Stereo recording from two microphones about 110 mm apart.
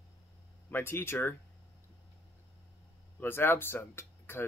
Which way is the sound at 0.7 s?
20° left (ahead or behind).